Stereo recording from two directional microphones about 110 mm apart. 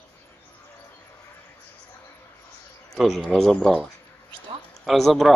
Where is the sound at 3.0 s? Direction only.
Centre (ahead or behind).